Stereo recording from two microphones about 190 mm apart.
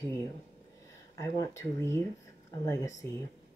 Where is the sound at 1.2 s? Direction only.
15° left (ahead or behind).